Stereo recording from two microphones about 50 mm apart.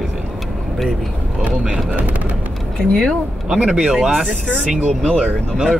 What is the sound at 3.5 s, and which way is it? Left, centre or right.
Speech, centre.